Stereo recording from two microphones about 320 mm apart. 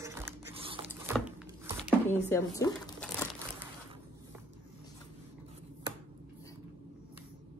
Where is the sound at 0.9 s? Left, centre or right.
Centre.